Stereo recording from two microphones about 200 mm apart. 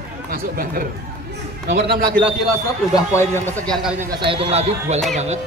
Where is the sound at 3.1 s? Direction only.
10° left (ahead or behind).